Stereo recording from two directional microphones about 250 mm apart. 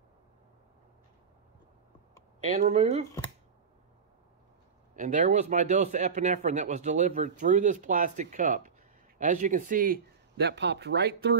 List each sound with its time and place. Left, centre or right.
2.6 s speech: right
4.9 s speech: right